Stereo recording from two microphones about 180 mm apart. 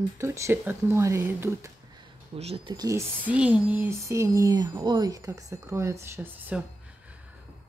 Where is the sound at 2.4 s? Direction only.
30° right (ahead or behind); by 6.6 s 10° right (ahead or behind).